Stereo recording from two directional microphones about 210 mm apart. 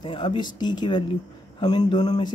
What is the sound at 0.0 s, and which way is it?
Speech, 25° left (ahead or behind).